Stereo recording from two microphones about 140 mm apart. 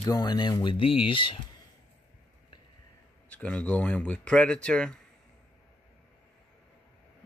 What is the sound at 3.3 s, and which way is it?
Speech, 10° left (ahead or behind).